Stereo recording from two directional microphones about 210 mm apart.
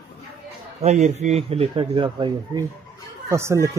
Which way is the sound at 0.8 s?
30° right (ahead or behind).